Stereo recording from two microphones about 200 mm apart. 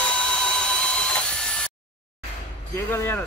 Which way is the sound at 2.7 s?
10° left (ahead or behind).